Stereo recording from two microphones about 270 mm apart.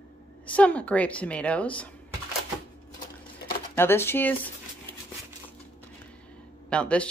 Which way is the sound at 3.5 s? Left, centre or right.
Centre.